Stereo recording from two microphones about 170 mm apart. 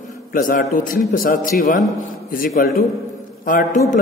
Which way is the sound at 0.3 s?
55° left (ahead or behind).